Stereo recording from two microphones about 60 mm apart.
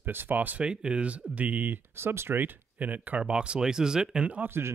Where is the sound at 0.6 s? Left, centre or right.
Centre.